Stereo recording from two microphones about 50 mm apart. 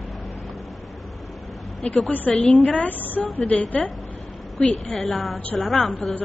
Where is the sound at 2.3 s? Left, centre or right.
Centre.